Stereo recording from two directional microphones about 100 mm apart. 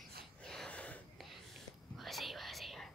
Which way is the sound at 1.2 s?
Centre (ahead or behind).